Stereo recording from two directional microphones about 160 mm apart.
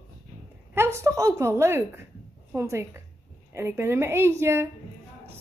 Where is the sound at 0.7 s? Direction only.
15° right (ahead or behind).